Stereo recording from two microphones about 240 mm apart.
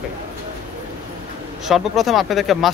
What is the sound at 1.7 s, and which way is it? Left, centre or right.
Speech, centre.